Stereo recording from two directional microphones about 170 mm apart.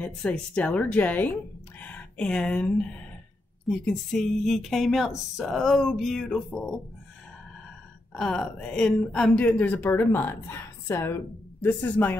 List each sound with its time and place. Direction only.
0.0 s a woman's voice: 5° left (ahead or behind)
8.1 s a woman's voice: 5° left (ahead or behind)